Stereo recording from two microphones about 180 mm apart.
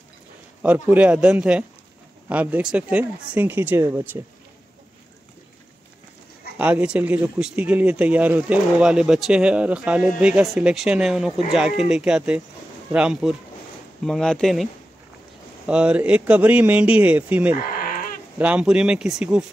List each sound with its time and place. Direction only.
0.6 s speech: 10° right (ahead or behind)
6.6 s speech: 5° right (ahead or behind)
17.6 s goat: 50° left (ahead or behind)
18.4 s speech: 5° right (ahead or behind)